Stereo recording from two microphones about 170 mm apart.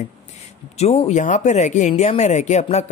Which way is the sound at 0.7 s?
40° left (ahead or behind).